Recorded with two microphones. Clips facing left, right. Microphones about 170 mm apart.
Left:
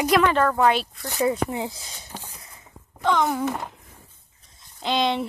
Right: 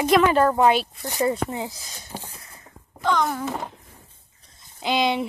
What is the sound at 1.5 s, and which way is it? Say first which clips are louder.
Speech: left 1 dB; 20° left (ahead or behind).